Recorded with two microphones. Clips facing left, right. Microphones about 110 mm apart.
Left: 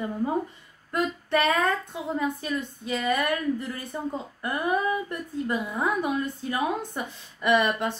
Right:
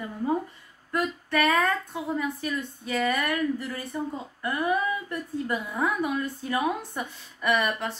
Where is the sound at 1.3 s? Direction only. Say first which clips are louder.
Even; 25° left (ahead or behind).